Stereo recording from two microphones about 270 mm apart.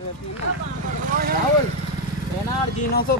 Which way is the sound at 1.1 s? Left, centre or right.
Right.